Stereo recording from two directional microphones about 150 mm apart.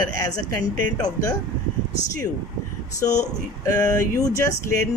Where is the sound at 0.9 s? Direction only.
25° left (ahead or behind).